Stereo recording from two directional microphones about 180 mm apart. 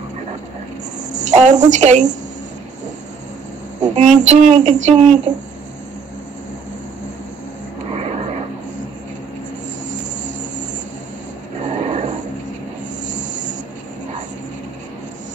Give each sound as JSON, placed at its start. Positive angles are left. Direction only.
{"t": 1.1, "sound": "a woman's voice", "side_deg": -40}
{"t": 3.9, "sound": "speech", "side_deg": -40}
{"t": 7.9, "sound": "vehicle", "side_deg": -35}
{"t": 11.7, "sound": "a sound", "side_deg": -40}